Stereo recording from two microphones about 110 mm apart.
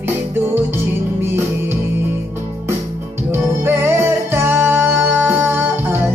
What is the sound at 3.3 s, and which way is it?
Music, 20° right (ahead or behind).